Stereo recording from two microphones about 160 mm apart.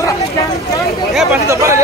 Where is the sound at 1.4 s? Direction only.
20° right (ahead or behind).